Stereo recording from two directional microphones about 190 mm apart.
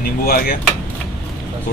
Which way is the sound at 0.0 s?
50° left (ahead or behind).